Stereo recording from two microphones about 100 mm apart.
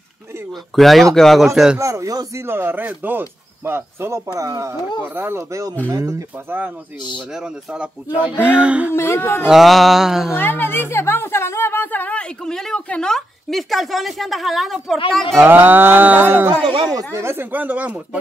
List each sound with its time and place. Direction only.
0.5 s a sound: centre (ahead or behind)
1.8 s speech: 30° right (ahead or behind)
2.4 s speech: 25° right (ahead or behind)
5.0 s speech: 20° right (ahead or behind)
7.2 s speech: 5° right (ahead or behind)
8.9 s speech: 25° left (ahead or behind)
9.5 s a sound: centre (ahead or behind)
10.3 s a woman's voice: 20° left (ahead or behind); by 15.0 s centre (ahead or behind)
15.3 s speech: 20° right (ahead or behind)